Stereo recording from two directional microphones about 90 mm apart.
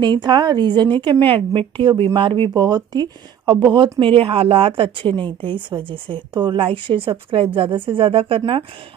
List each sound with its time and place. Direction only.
0.0 s speech: 55° right (ahead or behind)
1.2 s speech: 70° right (ahead or behind)
2.5 s speech: 50° right (ahead or behind); by 3.9 s 65° right (ahead or behind)
4.0 s a woman's voice: 85° right